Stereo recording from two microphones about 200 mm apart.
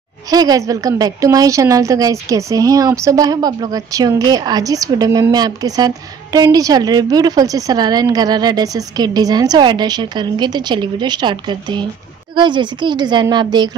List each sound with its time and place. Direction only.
0.3 s a woman's voice: 20° right (ahead or behind)